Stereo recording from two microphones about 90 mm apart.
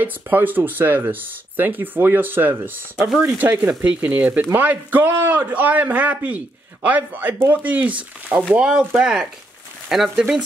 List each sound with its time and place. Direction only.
0.0 s speech: 20° right (ahead or behind)